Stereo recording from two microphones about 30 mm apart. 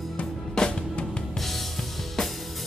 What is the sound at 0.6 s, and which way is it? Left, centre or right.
Music, left.